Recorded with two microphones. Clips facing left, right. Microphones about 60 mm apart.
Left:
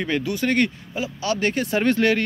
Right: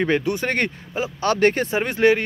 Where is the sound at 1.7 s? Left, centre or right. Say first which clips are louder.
Right 1 dB; right.